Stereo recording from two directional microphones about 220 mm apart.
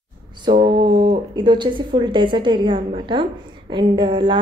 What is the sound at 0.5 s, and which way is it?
A woman's voice, 20° right (ahead or behind).